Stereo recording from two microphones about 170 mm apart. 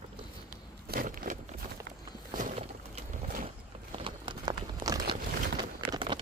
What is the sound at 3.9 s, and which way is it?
Crumpling, 30° right (ahead or behind).